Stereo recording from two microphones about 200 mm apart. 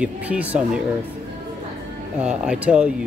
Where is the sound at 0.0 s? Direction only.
5° right (ahead or behind).